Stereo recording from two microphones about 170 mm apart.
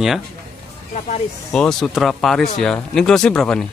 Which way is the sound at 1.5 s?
5° left (ahead or behind).